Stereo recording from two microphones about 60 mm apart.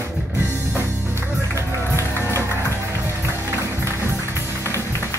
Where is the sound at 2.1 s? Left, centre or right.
Right.